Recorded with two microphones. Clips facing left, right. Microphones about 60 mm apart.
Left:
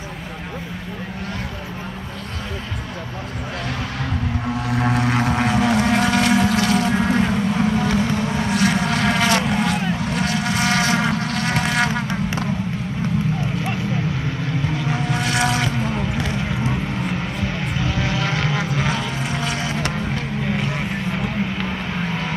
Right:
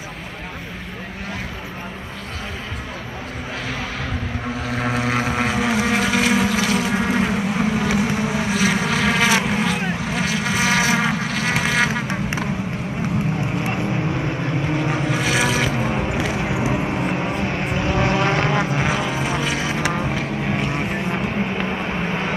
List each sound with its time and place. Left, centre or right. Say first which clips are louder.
4.6 s vehicle: left 2 dB; centre
14.9 s vehicle: right 1 dB; centre
16.1 s a sound: right 2 dB; centre
17.3 s vehicle: right 3 dB; right
18.9 s vehicle: right 2 dB; centre
20.2 s a sound: right 1 dB; centre
21.2 s vehicle: right 1 dB; right